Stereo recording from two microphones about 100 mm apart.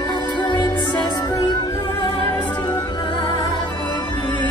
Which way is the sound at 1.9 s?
55° left (ahead or behind).